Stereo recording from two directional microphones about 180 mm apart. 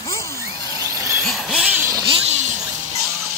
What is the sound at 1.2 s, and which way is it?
Vehicle, centre (ahead or behind).